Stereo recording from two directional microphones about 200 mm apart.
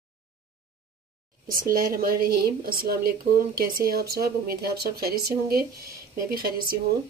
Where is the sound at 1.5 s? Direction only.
45° right (ahead or behind).